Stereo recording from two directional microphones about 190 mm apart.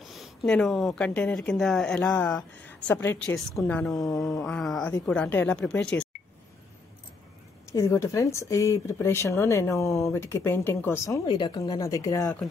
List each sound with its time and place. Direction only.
0.0 s speech: centre (ahead or behind)
7.6 s speech: 15° left (ahead or behind)
11.2 s speech: 25° left (ahead or behind)